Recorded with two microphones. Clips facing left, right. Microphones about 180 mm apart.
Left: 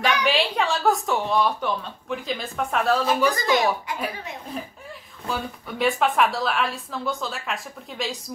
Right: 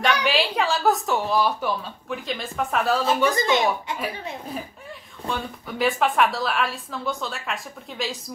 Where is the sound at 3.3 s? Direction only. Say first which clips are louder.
Even; 25° right (ahead or behind).